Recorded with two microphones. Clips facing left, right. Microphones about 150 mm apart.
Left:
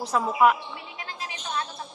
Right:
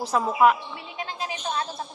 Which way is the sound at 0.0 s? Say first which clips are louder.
Right 1 dB; centre (ahead or behind).